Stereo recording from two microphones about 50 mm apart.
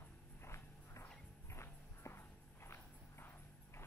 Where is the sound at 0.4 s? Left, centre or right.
Left.